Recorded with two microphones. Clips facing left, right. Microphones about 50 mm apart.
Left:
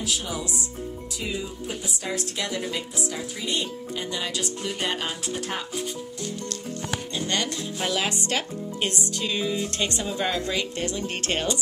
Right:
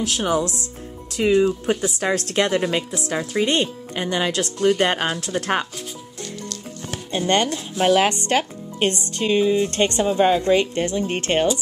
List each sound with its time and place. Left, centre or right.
0.0 s speech: right
7.1 s speech: right